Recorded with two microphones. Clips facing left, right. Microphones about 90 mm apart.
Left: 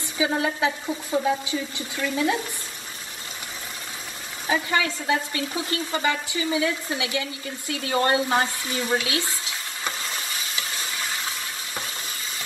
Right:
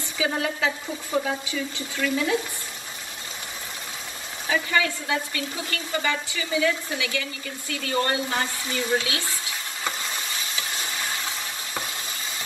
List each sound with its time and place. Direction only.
0.2 s speech: 25° left (ahead or behind)
4.5 s speech: 30° left (ahead or behind)
9.8 s a sound: 20° right (ahead or behind)